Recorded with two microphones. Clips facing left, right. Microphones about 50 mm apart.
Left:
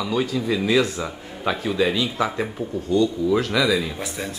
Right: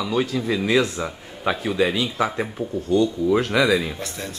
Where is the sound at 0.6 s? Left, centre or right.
Right.